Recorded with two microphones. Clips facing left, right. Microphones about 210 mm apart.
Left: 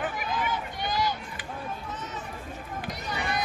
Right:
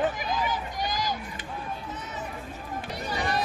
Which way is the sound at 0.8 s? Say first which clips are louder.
Left 3 dB; 40° right (ahead or behind).